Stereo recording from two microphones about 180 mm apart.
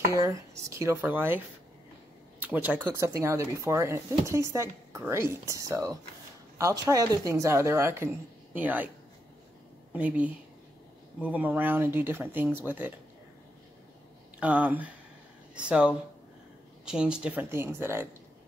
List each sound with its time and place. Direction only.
0.1 s speech: 15° right (ahead or behind)
2.4 s speech: 10° right (ahead or behind)
9.9 s speech: 10° right (ahead or behind)
14.4 s speech: 10° right (ahead or behind)